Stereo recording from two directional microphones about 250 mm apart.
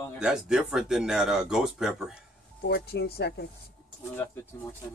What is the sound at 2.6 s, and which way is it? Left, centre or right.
Speech, left.